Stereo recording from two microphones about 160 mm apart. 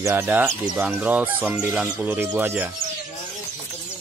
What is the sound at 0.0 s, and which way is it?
Speech, 15° right (ahead or behind).